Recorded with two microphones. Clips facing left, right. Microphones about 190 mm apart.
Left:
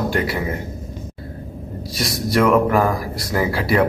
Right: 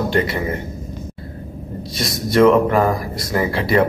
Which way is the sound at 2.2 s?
25° right (ahead or behind).